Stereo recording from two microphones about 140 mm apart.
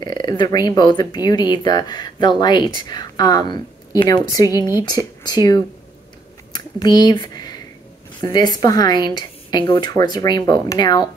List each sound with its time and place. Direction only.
0.0 s speech: 30° left (ahead or behind)